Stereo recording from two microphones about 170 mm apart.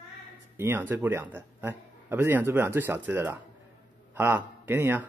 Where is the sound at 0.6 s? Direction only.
10° right (ahead or behind).